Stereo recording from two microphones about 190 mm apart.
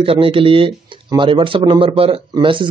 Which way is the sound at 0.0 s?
30° right (ahead or behind).